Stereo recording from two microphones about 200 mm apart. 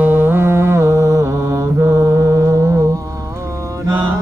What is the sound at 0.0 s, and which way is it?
Mantra, 10° right (ahead or behind).